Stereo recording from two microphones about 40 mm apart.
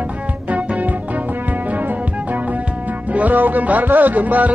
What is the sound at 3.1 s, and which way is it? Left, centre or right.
Music, right.